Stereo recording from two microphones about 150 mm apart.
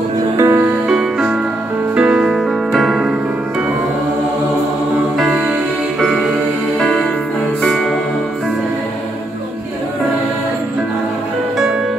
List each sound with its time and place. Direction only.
0.4 s music: 15° right (ahead or behind)
5.1 s music: 5° right (ahead or behind)